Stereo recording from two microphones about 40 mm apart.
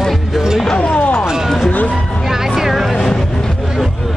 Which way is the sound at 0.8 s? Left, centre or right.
Left.